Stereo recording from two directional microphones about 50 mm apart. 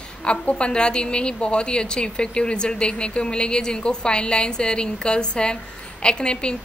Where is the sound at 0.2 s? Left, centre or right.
Left.